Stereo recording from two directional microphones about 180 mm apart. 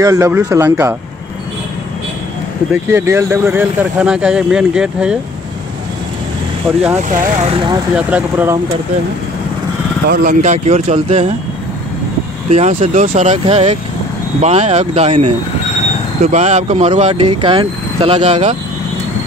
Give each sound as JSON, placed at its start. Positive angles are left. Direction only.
{"t": 0.0, "sound": "speech", "side_deg": -15}
{"t": 2.7, "sound": "speech", "side_deg": -10}
{"t": 7.0, "sound": "speech", "side_deg": -45}
{"t": 7.5, "sound": "speech", "side_deg": -25}
{"t": 7.9, "sound": "speech", "side_deg": -10}
{"t": 10.0, "sound": "speech", "side_deg": -60}
{"t": 10.4, "sound": "speech", "side_deg": -40}
{"t": 12.4, "sound": "speech", "side_deg": -40}